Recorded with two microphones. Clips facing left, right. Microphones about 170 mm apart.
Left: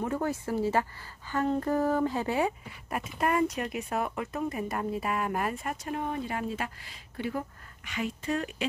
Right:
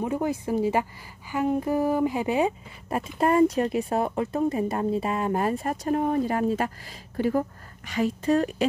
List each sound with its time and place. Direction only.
0.0 s speech: 15° right (ahead or behind)
3.0 s speech: 30° right (ahead or behind)